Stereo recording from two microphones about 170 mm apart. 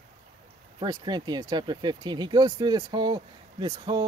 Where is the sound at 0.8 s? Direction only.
25° right (ahead or behind).